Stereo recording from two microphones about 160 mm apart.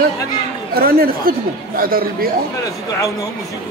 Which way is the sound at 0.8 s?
65° right (ahead or behind).